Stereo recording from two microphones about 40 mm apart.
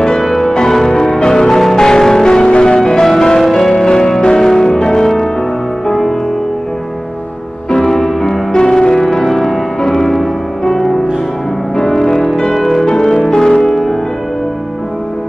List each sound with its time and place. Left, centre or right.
0.0 s music: centre
1.6 s change ringing: centre
3.7 s music: centre
5.9 s music: centre
7.7 s music: centre
8.5 s music: centre
9.3 s music: centre